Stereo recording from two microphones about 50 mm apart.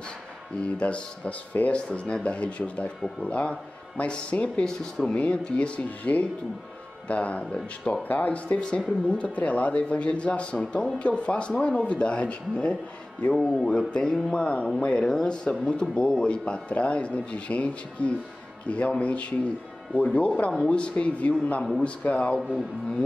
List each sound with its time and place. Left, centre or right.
0.6 s speech: left
4.6 s speech: centre
5.1 s speech: left
8.1 s speech: left
8.5 s speech: centre
13.3 s speech: centre; by 22.4 s left